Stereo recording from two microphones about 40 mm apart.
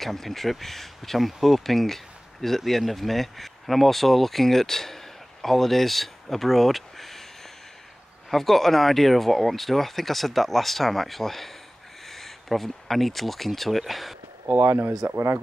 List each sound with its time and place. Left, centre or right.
0.0 s speech: centre
8.3 s speech: centre
14.6 s speech: right